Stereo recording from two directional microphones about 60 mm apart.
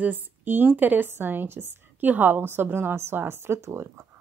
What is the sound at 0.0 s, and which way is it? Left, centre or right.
Speech, right.